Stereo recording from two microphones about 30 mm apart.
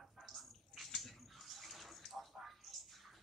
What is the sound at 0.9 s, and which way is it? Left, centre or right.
Bathtub, centre.